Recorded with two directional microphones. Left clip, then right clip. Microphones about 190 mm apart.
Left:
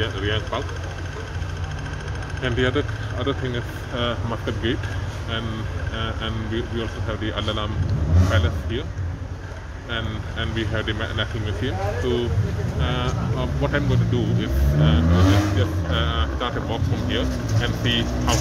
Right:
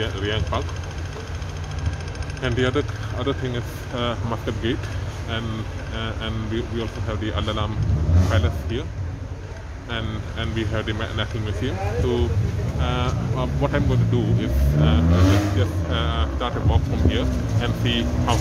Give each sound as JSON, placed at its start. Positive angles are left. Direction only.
{"t": 0.0, "sound": "speech", "side_deg": -15}
{"t": 2.4, "sound": "speech", "side_deg": -15}
{"t": 5.9, "sound": "speech", "side_deg": -10}
{"t": 9.8, "sound": "speech", "side_deg": -15}